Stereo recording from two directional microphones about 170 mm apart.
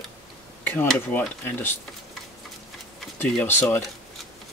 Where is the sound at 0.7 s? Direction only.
5° left (ahead or behind).